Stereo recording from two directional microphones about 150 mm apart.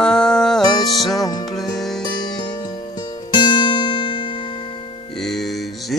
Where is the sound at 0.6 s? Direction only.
25° left (ahead or behind).